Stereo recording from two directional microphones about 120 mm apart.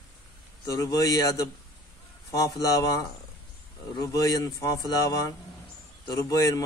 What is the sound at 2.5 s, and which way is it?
Speech, 30° left (ahead or behind).